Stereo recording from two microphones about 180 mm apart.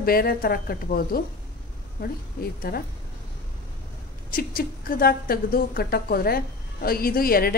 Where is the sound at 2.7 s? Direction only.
55° left (ahead or behind).